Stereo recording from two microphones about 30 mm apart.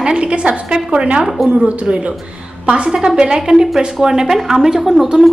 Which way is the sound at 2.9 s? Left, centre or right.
Centre.